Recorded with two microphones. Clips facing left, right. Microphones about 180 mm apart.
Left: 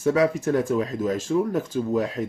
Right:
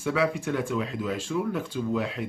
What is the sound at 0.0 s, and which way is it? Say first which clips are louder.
Speech: left 6 dB; 40° left (ahead or behind).